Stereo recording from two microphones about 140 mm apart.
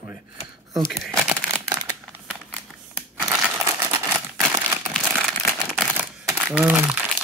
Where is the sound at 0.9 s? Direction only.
Centre (ahead or behind).